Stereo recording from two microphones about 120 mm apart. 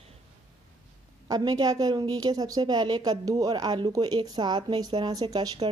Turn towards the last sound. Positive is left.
turn(degrees=-35)  # may be behind; listen again after turning